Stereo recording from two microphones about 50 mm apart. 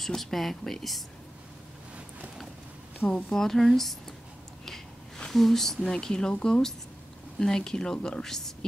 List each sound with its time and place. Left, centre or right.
0.0 s speech: centre
3.3 s speech: centre
4.6 s a sound: centre
5.3 s speech: centre